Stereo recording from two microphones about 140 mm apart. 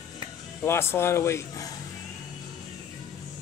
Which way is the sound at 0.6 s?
15° left (ahead or behind).